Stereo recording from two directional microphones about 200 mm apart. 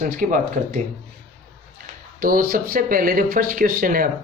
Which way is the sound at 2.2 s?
45° right (ahead or behind).